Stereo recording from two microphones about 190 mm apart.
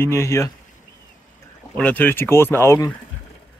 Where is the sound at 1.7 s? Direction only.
10° left (ahead or behind).